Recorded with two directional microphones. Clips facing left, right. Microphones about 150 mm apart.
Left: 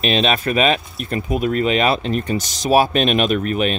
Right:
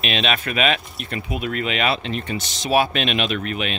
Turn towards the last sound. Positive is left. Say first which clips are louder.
# left 6 dB
turn(degrees=40)  # may be behind; listen again after turning